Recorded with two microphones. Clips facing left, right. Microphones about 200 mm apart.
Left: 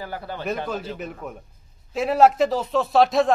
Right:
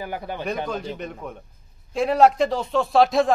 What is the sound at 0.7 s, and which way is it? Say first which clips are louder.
Speech: even; 5° left (ahead or behind).